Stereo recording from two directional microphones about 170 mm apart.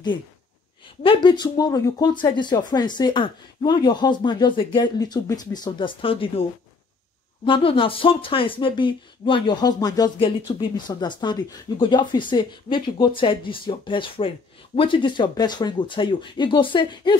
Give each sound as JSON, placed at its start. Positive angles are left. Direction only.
{"t": 1.0, "sound": "speech", "side_deg": 30}
{"t": 7.4, "sound": "speech", "side_deg": 30}